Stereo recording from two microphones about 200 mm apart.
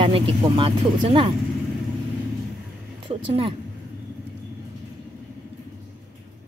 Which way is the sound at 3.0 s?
25° right (ahead or behind).